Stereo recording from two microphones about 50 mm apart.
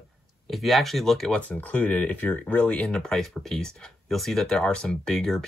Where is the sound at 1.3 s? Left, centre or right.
Left.